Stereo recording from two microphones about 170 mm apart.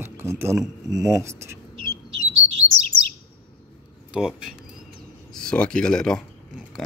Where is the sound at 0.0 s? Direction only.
15° right (ahead or behind).